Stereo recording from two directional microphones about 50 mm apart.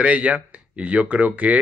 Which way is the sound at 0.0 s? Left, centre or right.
Right.